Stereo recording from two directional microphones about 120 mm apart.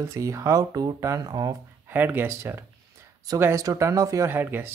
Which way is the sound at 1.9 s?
15° right (ahead or behind).